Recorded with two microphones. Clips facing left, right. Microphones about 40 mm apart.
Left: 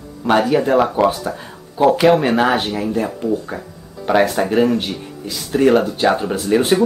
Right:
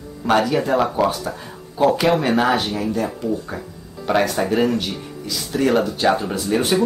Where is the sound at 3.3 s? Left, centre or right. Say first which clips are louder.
Left 3 dB; centre.